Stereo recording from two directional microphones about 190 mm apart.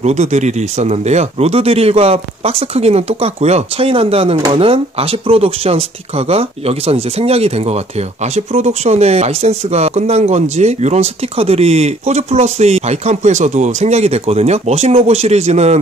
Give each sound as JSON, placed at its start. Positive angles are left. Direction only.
{"t": 0.0, "sound": "speech", "side_deg": -35}